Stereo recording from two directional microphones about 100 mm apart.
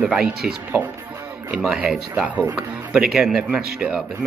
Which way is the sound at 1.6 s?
5° right (ahead or behind).